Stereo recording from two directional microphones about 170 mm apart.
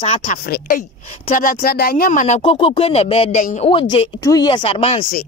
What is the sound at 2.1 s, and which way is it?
Speech, 45° left (ahead or behind).